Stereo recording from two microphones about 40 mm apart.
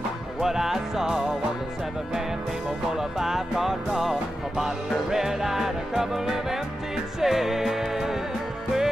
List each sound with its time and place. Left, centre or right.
0.4 s music: centre
3.0 s music: centre